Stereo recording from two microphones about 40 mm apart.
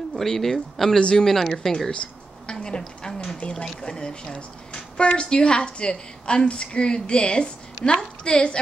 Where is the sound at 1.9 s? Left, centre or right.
Left.